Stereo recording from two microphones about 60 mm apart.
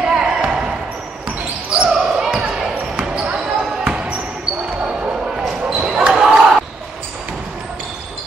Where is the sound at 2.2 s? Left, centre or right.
Centre.